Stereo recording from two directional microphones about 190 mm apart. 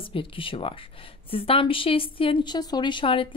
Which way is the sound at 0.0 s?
30° left (ahead or behind).